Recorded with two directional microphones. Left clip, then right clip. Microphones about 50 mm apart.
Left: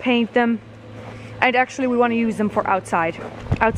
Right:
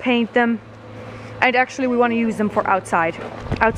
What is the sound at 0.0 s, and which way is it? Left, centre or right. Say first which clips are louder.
Speech: right 1 dB; centre.